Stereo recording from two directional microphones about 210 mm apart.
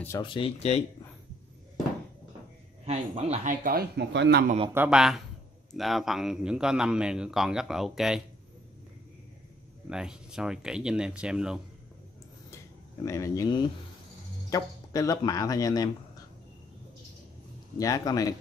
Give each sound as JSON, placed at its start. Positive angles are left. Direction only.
{"t": 0.2, "sound": "speech", "side_deg": 25}
{"t": 2.8, "sound": "speech", "side_deg": -30}
{"t": 4.6, "sound": "speech", "side_deg": -5}
{"t": 9.8, "sound": "speech", "side_deg": -5}
{"t": 13.0, "sound": "speech", "side_deg": 15}
{"t": 17.7, "sound": "speech", "side_deg": 15}